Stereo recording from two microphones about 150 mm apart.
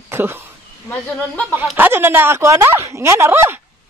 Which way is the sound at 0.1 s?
15° right (ahead or behind).